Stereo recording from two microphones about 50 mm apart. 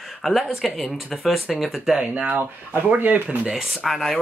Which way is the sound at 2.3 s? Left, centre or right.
Right.